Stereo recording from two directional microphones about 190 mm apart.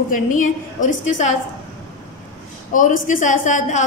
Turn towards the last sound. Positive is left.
turn(degrees=40)  # may be behind; listen again after turning